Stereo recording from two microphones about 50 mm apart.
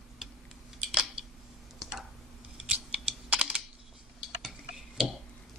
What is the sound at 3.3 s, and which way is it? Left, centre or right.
Computer keyboard, right.